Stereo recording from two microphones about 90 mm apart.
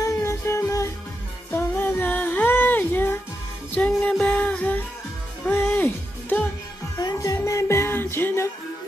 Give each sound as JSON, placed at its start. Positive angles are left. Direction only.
{"t": 0.0, "sound": "music", "side_deg": 30}
{"t": 5.4, "sound": "music", "side_deg": 30}
{"t": 7.0, "sound": "music", "side_deg": 45}